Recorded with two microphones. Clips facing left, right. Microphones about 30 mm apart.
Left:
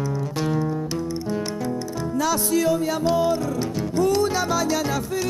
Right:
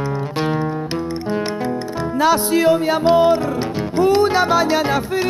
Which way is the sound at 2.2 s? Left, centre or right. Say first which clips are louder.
Right 6 dB; right.